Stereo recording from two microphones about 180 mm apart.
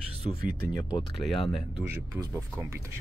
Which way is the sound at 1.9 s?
15° right (ahead or behind).